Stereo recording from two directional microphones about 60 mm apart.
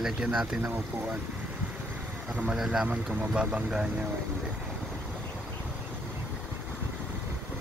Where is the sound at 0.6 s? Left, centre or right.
Right.